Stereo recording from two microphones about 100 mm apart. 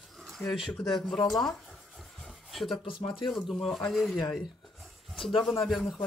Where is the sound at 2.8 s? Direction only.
60° left (ahead or behind).